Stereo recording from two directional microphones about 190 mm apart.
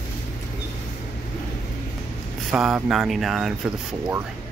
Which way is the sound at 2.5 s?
Centre (ahead or behind).